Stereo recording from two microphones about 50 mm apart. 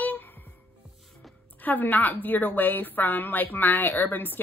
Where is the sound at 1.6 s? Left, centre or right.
Left.